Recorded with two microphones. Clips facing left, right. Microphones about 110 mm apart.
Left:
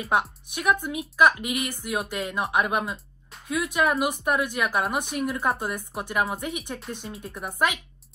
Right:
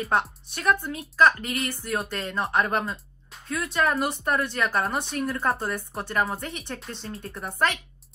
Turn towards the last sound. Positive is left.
turn(degrees=0)  # may be behind; listen again after turning